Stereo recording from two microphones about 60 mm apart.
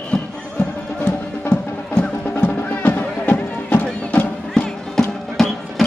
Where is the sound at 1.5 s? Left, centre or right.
Left.